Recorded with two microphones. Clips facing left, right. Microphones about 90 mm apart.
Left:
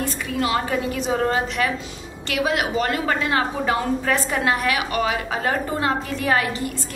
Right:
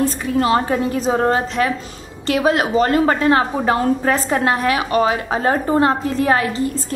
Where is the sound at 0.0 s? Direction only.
35° right (ahead or behind).